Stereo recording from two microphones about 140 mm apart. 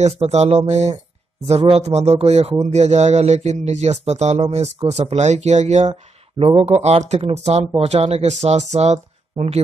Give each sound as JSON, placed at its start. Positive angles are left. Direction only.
{"t": 0.0, "sound": "speech", "side_deg": -50}